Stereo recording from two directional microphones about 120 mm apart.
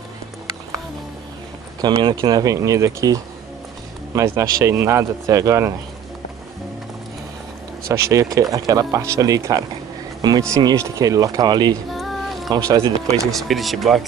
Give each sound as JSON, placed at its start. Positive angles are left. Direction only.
{"t": 1.8, "sound": "speech", "side_deg": -35}
{"t": 7.9, "sound": "speech", "side_deg": -25}
{"t": 11.9, "sound": "music", "side_deg": 0}
{"t": 12.4, "sound": "speech", "side_deg": -30}
{"t": 13.3, "sound": "speech", "side_deg": 0}